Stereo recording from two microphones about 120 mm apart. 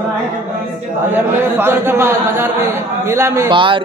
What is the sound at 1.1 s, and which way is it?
A man's voice, 20° right (ahead or behind).